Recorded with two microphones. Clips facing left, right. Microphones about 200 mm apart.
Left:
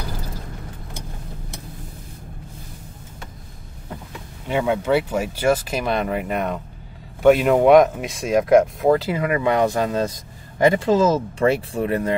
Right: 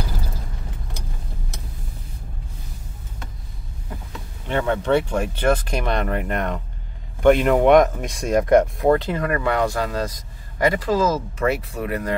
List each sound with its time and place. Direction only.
4.5 s speech: 10° left (ahead or behind); by 12.2 s 25° left (ahead or behind)